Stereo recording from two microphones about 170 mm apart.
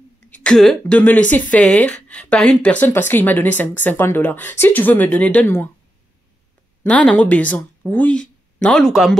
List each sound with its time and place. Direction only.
0.4 s speech: 5° left (ahead or behind)
6.8 s speech: 5° left (ahead or behind)